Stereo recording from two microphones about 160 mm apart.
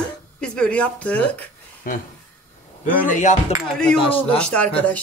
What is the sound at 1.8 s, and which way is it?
Speech, 60° left (ahead or behind).